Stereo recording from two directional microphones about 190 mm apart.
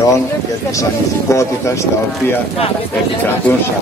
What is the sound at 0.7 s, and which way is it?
Speech, 15° left (ahead or behind).